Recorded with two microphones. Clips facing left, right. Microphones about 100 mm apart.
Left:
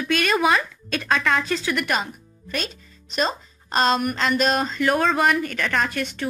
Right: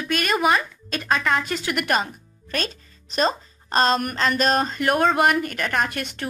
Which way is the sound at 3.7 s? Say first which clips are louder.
Even; 40° right (ahead or behind).